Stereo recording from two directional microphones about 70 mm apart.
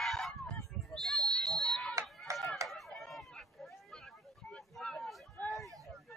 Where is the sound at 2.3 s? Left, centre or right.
Right.